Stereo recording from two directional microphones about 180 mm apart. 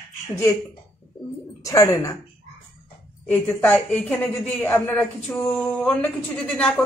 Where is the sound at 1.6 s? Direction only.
15° left (ahead or behind).